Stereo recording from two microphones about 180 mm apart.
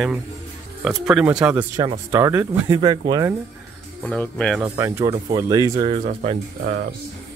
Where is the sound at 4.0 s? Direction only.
5° left (ahead or behind).